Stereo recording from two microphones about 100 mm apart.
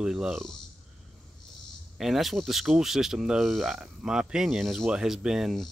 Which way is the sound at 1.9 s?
Centre (ahead or behind).